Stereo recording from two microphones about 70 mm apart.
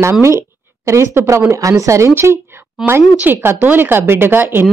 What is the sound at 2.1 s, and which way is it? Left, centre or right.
Speech, right.